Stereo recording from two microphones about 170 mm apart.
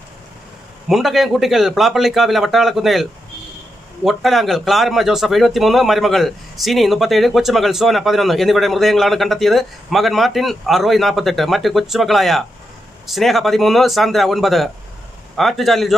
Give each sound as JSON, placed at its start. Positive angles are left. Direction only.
{"t": 0.8, "sound": "speech", "side_deg": 0}